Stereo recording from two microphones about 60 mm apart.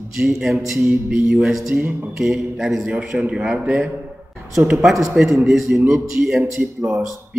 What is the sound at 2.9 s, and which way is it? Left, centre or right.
Speech, centre.